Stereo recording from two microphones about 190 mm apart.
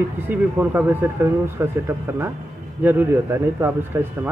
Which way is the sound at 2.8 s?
10° right (ahead or behind).